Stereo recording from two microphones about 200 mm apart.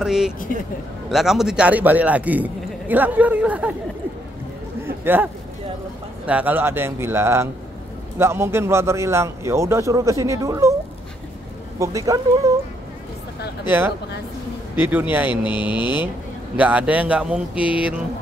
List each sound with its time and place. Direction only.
0.0 s a man's voice: 5° right (ahead or behind)
4.8 s a sound: 10° right (ahead or behind)
6.2 s a man's voice: 5° right (ahead or behind)
11.8 s a man's voice: 15° right (ahead or behind)
13.7 s a man's voice: 10° right (ahead or behind)
15.4 s speech: 25° left (ahead or behind)
16.5 s a man's voice: 5° right (ahead or behind)